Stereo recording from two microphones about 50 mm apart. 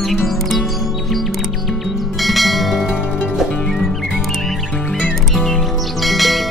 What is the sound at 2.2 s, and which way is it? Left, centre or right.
Music, centre.